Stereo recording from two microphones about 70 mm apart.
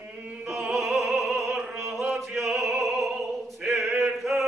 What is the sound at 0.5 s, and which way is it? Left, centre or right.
Opera, centre.